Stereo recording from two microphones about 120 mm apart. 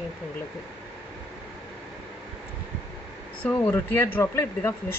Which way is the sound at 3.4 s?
15° left (ahead or behind).